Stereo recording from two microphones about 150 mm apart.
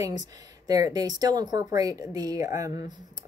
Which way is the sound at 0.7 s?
25° right (ahead or behind).